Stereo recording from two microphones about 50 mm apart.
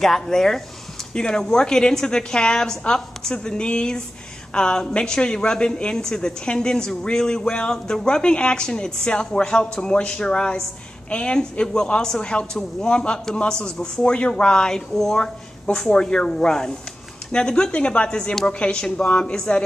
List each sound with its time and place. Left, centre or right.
0.0 s a woman's voice: centre